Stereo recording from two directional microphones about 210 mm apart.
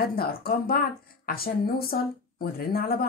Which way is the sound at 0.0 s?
45° left (ahead or behind).